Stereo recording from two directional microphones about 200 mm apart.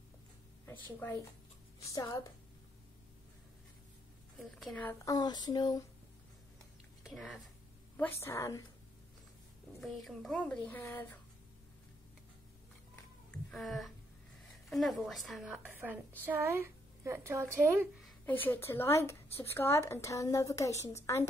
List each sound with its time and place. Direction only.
0.9 s a woman's voice: 10° left (ahead or behind)
4.4 s a woman's voice: centre (ahead or behind); by 5.9 s 20° left (ahead or behind)
7.0 s speech: centre (ahead or behind)
8.0 s a woman's voice: 15° left (ahead or behind)
9.8 s speech: centre (ahead or behind)
13.3 s a sound: centre (ahead or behind)
14.7 s speech: centre (ahead or behind)
18.2 s a woman's voice: 10° left (ahead or behind)